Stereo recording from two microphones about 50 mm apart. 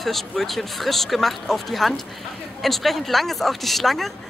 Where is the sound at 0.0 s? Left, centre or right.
Centre.